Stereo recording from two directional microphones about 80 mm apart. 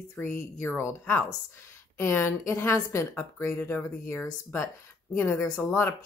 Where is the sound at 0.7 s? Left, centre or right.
Left.